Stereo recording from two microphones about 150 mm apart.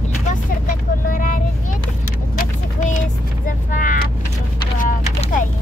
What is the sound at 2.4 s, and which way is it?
Vehicle, 55° left (ahead or behind).